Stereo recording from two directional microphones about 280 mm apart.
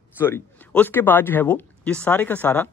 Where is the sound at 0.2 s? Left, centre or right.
Centre.